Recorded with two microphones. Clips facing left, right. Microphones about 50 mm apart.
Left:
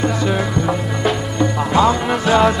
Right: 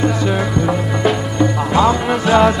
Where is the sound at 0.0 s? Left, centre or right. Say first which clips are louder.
Right 1 dB; centre.